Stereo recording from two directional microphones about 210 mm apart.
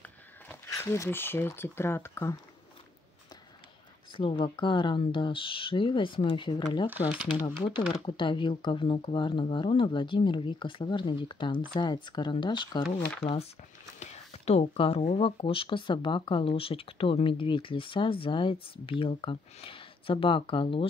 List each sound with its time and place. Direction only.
0.5 s speech: 10° left (ahead or behind)
4.1 s speech: 25° left (ahead or behind)